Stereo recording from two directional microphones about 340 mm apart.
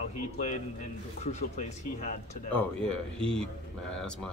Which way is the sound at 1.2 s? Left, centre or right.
Centre.